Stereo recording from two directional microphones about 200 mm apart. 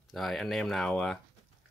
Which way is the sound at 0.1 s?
Centre (ahead or behind).